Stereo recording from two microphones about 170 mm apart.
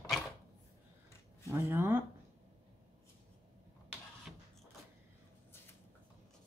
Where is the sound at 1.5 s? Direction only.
15° right (ahead or behind).